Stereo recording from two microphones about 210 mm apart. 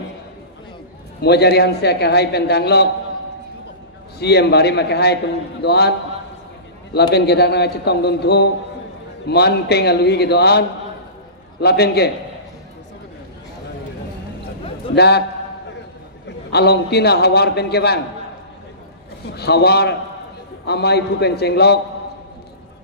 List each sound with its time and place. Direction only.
1.2 s a man's voice: 50° left (ahead or behind)
4.2 s a man's voice: 50° left (ahead or behind)
11.6 s a man's voice: 50° left (ahead or behind)
15.0 s a man's voice: 50° left (ahead or behind)
16.4 s a man's voice: 50° left (ahead or behind)
19.3 s a man's voice: 50° left (ahead or behind)